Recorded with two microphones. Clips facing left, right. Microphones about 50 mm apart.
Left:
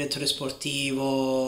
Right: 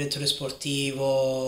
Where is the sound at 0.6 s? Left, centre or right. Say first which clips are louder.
Right 2 dB; left.